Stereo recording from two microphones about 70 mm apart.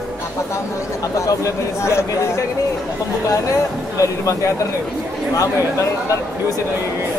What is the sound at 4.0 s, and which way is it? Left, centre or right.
Speech, left.